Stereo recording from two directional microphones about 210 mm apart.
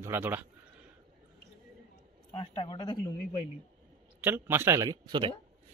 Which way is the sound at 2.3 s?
20° left (ahead or behind).